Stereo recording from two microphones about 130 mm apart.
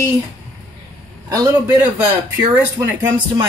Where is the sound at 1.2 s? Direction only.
25° right (ahead or behind).